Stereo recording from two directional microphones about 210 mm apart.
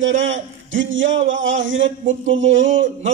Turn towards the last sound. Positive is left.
turn(degrees=-65)  # may be behind; listen again after turning